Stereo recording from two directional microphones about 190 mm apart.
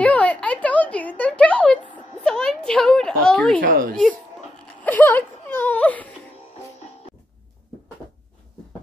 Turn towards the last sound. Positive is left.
turn(degrees=35)  # may be behind; listen again after turning